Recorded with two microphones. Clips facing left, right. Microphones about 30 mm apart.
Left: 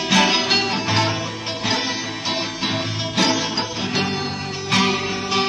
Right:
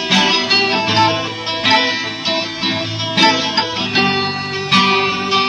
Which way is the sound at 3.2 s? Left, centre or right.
Right.